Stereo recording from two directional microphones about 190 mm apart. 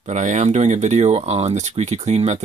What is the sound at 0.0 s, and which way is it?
Speech, 40° right (ahead or behind).